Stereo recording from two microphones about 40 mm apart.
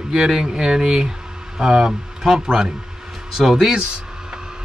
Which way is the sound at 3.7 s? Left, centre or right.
Right.